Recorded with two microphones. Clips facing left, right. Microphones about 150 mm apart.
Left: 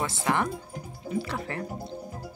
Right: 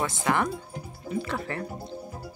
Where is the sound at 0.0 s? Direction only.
30° left (ahead or behind).